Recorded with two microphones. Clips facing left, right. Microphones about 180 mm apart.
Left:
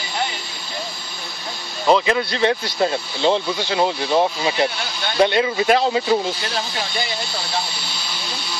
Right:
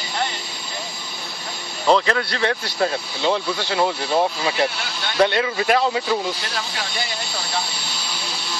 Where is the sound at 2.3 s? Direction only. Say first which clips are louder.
Left 4 dB; 20° left (ahead or behind).